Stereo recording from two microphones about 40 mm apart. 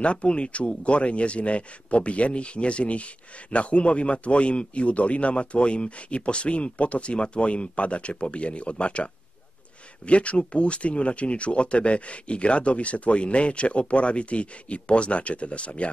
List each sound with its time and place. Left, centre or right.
0.0 s speech: left